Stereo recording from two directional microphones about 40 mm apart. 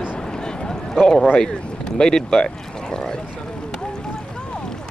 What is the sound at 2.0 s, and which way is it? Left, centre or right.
Speech, centre.